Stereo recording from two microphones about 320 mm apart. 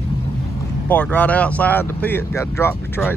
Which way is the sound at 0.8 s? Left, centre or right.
Centre.